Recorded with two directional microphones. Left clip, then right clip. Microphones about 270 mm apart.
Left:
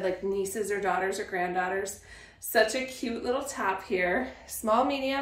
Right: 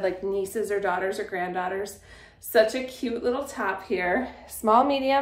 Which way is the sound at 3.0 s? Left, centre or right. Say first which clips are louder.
Right 6 dB; centre.